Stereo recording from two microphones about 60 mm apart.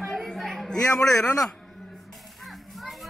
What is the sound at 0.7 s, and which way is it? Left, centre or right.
Speech, centre.